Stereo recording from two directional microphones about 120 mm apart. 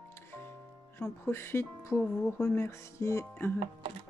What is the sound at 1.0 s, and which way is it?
Speech, 20° left (ahead or behind).